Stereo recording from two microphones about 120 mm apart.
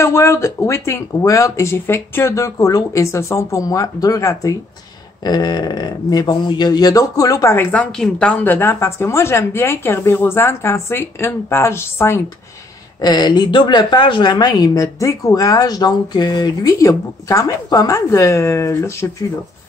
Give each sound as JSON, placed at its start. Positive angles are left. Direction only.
{"t": 0.0, "sound": "speech", "side_deg": 20}
{"t": 13.0, "sound": "speech", "side_deg": 35}